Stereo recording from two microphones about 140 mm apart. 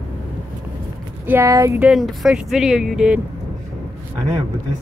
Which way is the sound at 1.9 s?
Centre (ahead or behind).